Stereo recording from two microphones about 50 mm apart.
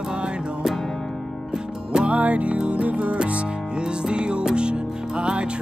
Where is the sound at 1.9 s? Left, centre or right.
Centre.